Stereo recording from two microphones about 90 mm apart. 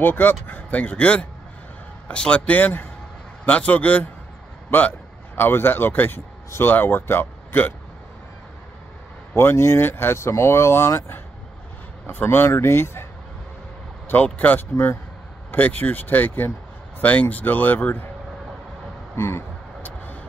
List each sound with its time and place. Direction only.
0.0 s a man's voice: 20° left (ahead or behind)
9.3 s speech: 30° left (ahead or behind)
14.0 s speech: 20° left (ahead or behind)
19.1 s vehicle: 30° left (ahead or behind)